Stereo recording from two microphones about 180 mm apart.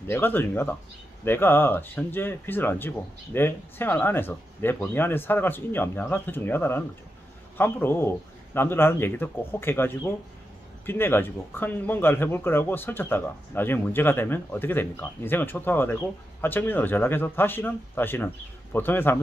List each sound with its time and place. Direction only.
0.0 s speech: 15° left (ahead or behind)